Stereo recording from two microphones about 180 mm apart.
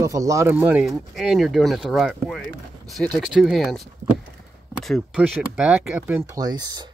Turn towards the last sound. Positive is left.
turn(degrees=-25)  # may be behind; listen again after turning